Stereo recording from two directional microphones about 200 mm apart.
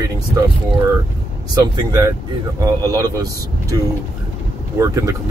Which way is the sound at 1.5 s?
20° right (ahead or behind).